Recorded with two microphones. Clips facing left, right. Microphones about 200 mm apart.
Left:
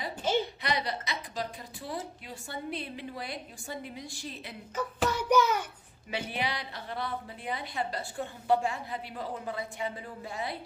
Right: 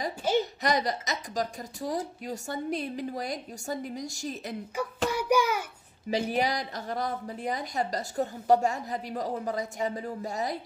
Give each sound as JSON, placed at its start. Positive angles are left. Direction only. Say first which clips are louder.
{"t": 0.4, "sound": "a woman's voice", "louder": "right 4 dB", "side_deg": -45}
{"t": 5.1, "sound": "child singing", "louder": "even", "side_deg": -10}
{"t": 6.0, "sound": "a woman's voice", "louder": "right 7 dB", "side_deg": -40}